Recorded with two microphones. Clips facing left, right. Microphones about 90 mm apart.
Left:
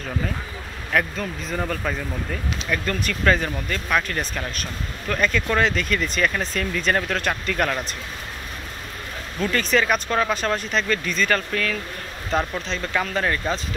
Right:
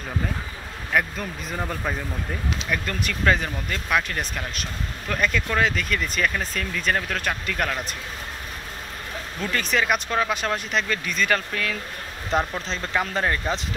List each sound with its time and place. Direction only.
0.9 s speech: 5° right (ahead or behind)
9.4 s speech: 10° right (ahead or behind)